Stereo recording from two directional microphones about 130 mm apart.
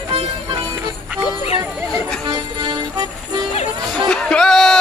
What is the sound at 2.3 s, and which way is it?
Music, 35° right (ahead or behind).